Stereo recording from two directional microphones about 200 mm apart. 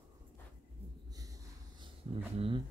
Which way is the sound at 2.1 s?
30° right (ahead or behind).